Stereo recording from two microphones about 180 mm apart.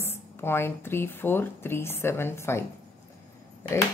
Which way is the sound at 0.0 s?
15° left (ahead or behind).